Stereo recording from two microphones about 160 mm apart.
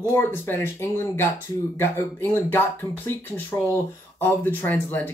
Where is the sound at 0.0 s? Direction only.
15° left (ahead or behind).